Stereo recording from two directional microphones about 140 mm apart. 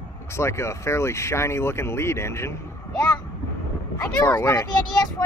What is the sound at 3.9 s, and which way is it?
Speech, 20° left (ahead or behind).